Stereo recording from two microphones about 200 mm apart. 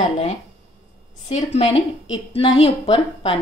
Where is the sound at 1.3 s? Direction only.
30° left (ahead or behind).